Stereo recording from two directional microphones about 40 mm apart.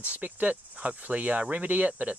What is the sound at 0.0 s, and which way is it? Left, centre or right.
Speech, right.